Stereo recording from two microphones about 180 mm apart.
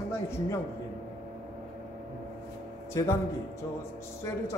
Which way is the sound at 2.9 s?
15° left (ahead or behind).